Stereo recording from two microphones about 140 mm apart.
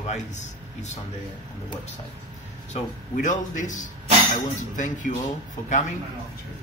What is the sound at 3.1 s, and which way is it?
A man's voice, 65° left (ahead or behind).